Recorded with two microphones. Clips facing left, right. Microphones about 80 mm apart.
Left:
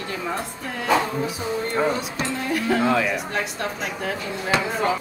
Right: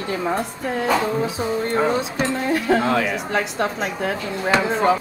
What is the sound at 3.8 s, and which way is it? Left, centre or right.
Speech, right.